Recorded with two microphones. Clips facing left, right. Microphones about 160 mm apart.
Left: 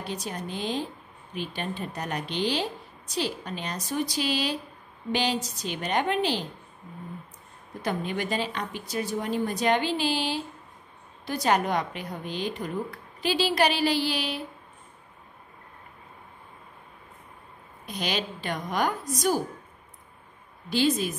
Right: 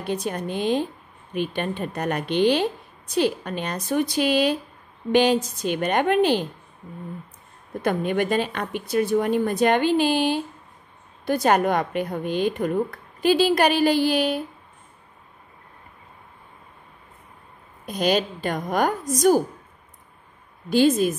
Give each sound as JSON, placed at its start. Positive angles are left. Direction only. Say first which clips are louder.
{"t": 0.0, "sound": "a woman's voice", "louder": "right 7 dB", "side_deg": -55}
{"t": 7.8, "sound": "a woman's voice", "louder": "right 7 dB", "side_deg": -55}
{"t": 17.8, "sound": "a woman's voice", "louder": "right 9 dB", "side_deg": -45}
{"t": 20.7, "sound": "a woman's voice", "louder": "right 7 dB", "side_deg": -50}